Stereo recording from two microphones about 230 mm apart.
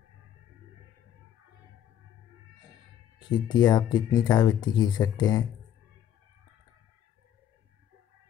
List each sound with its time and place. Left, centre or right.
3.2 s speech: centre